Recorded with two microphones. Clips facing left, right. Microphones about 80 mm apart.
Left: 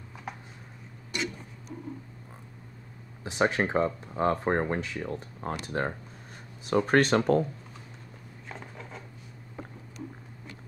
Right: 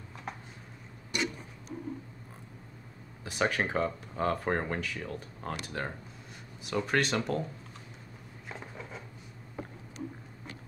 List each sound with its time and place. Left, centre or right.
3.3 s speech: left
6.6 s speech: left
8.5 s rub: centre